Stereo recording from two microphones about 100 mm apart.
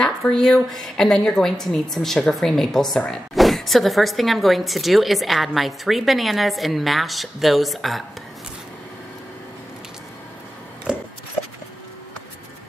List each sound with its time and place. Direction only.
0.0 s speech: 5° left (ahead or behind)